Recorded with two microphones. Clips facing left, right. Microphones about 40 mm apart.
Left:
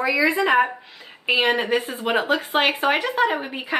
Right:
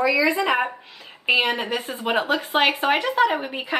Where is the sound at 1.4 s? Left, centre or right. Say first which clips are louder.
Left 3 dB; centre.